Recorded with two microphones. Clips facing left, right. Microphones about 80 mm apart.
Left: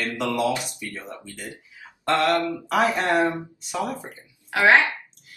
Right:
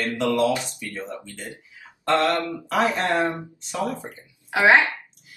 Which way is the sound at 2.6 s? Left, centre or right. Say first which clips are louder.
Right 2 dB; centre.